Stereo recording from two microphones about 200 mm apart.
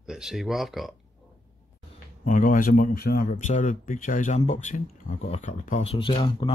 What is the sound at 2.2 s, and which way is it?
Speech, 40° left (ahead or behind).